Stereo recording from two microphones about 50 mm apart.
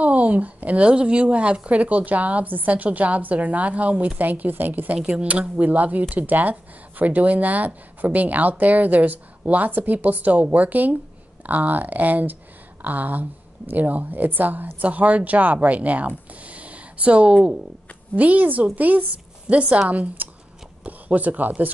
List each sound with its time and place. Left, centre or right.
0.0 s a woman's voice: right
5.0 s speech: right
16.1 s a sound: right
18.1 s a woman's voice: right